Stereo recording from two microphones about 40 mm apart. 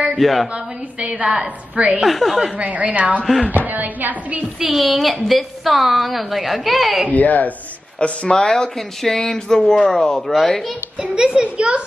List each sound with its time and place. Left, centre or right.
0.2 s a woman's voice: centre
1.3 s a child's voice: right
2.0 s a woman's voice: centre
2.5 s a woman's voice: right
4.6 s a woman's voice: centre
7.1 s speech: left
8.0 s speech: left
8.4 s speech: centre
11.0 s a child's voice: right